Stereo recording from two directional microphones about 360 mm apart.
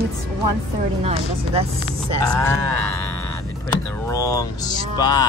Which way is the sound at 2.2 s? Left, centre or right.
Centre.